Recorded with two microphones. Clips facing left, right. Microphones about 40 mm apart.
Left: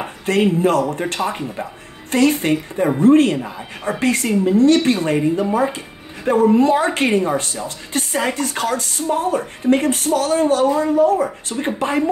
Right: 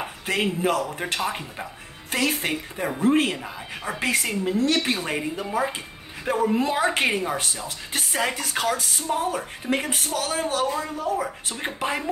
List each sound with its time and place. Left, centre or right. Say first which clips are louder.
0.3 s a woman's voice: left 8 dB; centre
11.4 s a woman's voice: left 6 dB; centre